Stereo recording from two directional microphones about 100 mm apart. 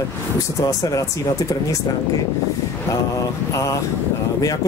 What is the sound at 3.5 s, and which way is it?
Speech, 30° left (ahead or behind).